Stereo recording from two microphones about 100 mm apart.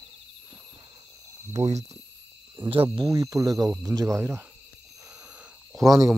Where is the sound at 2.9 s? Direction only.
40° right (ahead or behind).